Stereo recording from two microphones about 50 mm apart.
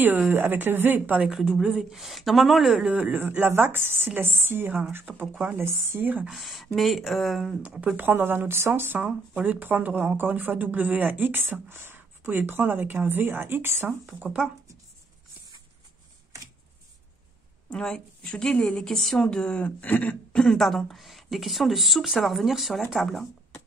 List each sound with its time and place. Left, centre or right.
0.0 s speech: right
1.4 s speech: centre
2.8 s speech: right
4.9 s speech: right
5.6 s speech: right
5.9 s speech: right
6.3 s speech: centre
7.9 s speech: right
9.4 s speech: right
11.7 s speech: right
17.6 s a woman's voice: centre
19.6 s speech: left
20.3 s speech: centre